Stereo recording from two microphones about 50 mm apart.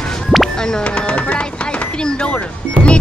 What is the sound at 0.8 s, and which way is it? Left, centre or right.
Speech, left.